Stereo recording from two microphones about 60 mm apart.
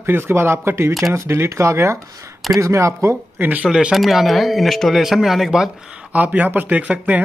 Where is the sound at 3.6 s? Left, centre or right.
Centre.